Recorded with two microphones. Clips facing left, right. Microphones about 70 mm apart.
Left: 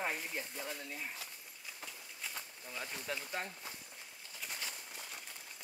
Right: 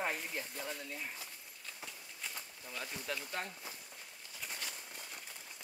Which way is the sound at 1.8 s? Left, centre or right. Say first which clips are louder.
Even; centre.